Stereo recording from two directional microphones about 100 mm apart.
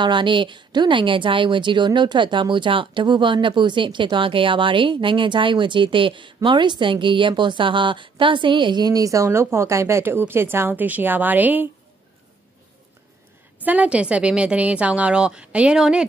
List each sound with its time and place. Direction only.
0.0 s speech: 55° right (ahead or behind); by 11.6 s 15° right (ahead or behind)
13.7 s a woman's voice: 15° right (ahead or behind)